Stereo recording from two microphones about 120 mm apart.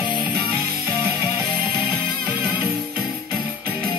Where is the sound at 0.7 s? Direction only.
25° right (ahead or behind).